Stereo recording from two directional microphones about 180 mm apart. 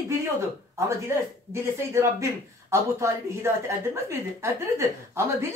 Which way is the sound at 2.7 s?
15° right (ahead or behind).